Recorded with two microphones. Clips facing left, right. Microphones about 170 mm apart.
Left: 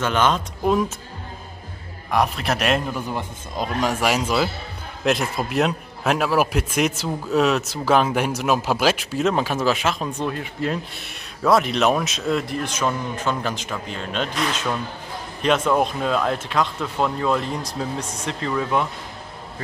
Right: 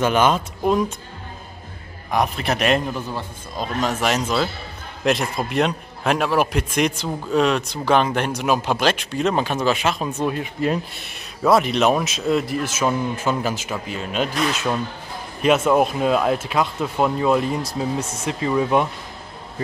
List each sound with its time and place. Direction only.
0.0 s speech: 10° right (ahead or behind)
2.0 s a man's voice: centre (ahead or behind)
3.1 s a man's voice: 15° left (ahead or behind); by 10.2 s centre (ahead or behind)
10.2 s speech: 15° right (ahead or behind)
11.0 s a man's voice: centre (ahead or behind); by 18.9 s 15° right (ahead or behind)